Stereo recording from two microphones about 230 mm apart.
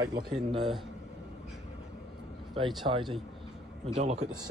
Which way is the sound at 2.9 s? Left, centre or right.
Right.